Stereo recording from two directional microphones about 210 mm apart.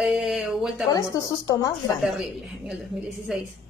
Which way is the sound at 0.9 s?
15° left (ahead or behind).